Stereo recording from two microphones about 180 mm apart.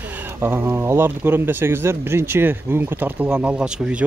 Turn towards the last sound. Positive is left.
turn(degrees=-5)  # may be behind; listen again after turning